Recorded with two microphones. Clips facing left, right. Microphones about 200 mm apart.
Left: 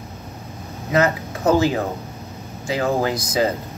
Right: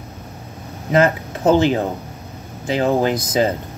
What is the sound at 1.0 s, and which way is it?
Speech, 25° right (ahead or behind).